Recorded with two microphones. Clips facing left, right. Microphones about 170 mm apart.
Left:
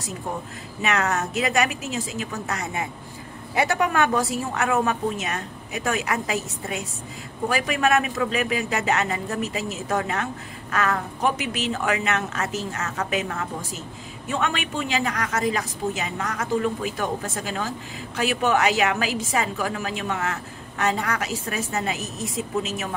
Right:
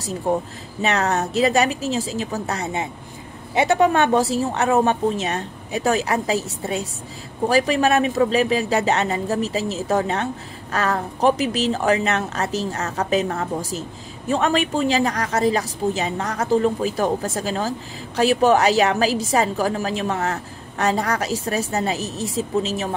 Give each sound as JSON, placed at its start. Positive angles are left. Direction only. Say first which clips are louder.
{"t": 0.3, "sound": "a woman's voice", "louder": "right 12 dB", "side_deg": -30}